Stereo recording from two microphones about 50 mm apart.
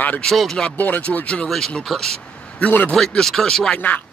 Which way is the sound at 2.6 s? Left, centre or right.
Left.